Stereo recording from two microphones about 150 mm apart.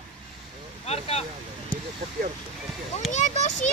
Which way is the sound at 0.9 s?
45° left (ahead or behind).